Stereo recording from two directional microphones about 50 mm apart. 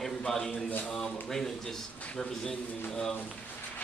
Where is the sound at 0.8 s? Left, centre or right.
Centre.